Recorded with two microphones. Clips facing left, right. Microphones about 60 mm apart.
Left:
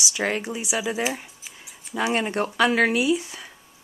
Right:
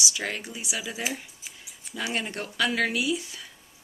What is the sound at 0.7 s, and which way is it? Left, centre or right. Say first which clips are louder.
Speech: left 8 dB; left.